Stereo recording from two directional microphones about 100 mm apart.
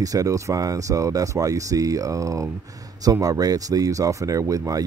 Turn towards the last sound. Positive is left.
turn(degrees=-35)  # may be behind; listen again after turning